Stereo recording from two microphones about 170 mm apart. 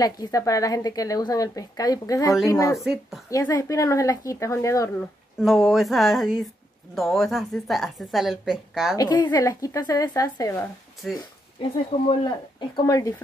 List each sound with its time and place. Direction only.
0.0 s speech: 20° left (ahead or behind)
2.8 s a woman's voice: centre (ahead or behind)
3.3 s speech: 20° left (ahead or behind)
5.4 s a woman's voice: centre (ahead or behind)
8.9 s speech: 20° left (ahead or behind)
11.0 s a woman's voice: centre (ahead or behind)
12.1 s speech: 30° left (ahead or behind)